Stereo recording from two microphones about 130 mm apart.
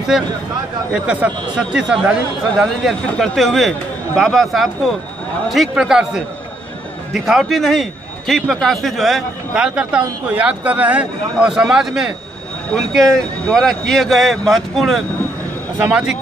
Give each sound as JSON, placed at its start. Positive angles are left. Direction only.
{"t": 0.1, "sound": "a man's voice", "side_deg": -5}
{"t": 1.6, "sound": "a man's voice", "side_deg": -5}